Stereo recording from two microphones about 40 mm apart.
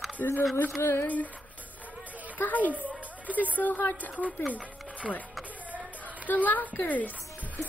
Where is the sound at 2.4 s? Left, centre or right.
Left.